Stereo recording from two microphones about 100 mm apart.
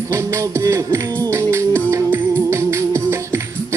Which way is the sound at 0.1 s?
30° right (ahead or behind).